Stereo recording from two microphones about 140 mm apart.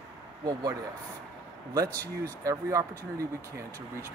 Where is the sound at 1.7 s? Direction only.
25° right (ahead or behind).